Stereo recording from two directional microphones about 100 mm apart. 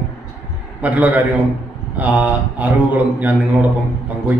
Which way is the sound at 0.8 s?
15° right (ahead or behind).